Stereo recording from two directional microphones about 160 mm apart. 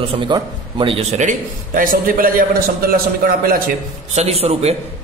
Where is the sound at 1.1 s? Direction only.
55° right (ahead or behind).